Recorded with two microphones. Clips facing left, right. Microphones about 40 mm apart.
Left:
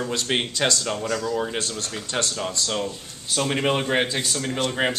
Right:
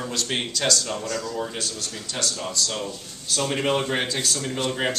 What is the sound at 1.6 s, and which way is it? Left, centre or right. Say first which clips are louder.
A man's voice: left 3 dB; left.